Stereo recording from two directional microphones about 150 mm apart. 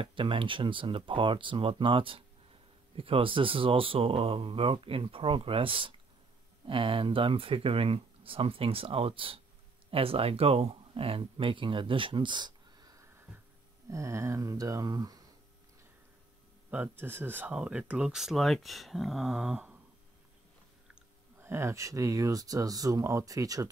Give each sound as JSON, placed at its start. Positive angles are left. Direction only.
{"t": 0.0, "sound": "speech", "side_deg": -35}
{"t": 16.7, "sound": "speech", "side_deg": -10}
{"t": 21.4, "sound": "speech", "side_deg": -15}